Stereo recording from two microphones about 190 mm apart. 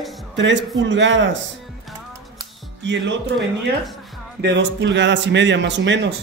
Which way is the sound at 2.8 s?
70° right (ahead or behind).